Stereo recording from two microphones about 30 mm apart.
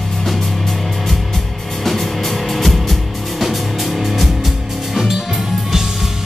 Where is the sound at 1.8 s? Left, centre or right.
Centre.